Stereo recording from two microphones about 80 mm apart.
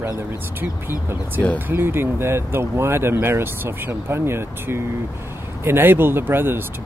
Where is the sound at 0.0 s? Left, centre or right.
Right.